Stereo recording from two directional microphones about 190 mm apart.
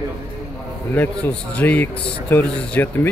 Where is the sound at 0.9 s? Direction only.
5° left (ahead or behind).